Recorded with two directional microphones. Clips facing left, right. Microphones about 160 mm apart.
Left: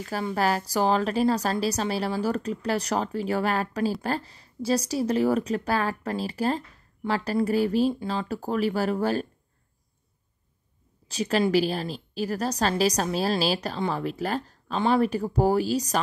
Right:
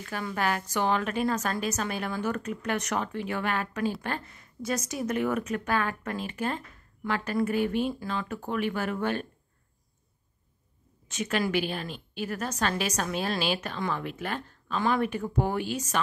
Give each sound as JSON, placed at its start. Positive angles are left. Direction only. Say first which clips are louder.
{"t": 0.0, "sound": "a woman's voice", "louder": "left 4 dB", "side_deg": 35}
{"t": 11.1, "sound": "a woman's voice", "louder": "left 5 dB", "side_deg": 35}